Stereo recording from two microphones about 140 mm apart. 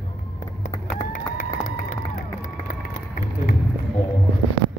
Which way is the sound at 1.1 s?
65° left (ahead or behind).